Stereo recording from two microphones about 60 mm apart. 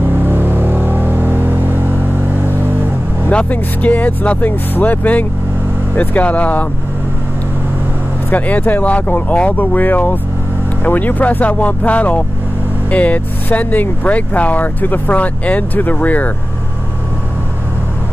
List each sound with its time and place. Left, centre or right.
0.0 s vehicle: right
3.3 s speech: left
8.3 s speech: left